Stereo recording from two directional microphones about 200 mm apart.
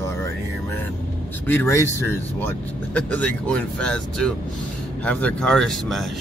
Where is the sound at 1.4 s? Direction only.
10° left (ahead or behind).